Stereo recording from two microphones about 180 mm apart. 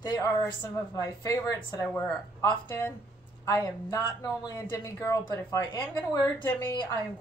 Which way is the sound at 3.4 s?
20° left (ahead or behind).